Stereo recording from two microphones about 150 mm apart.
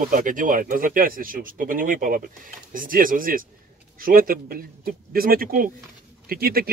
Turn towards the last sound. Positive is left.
turn(degrees=-85)